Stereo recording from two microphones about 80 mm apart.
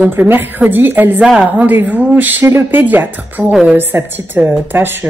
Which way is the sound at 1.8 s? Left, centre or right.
Right.